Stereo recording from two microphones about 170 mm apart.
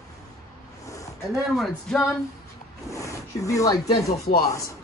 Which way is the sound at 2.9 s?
20° left (ahead or behind).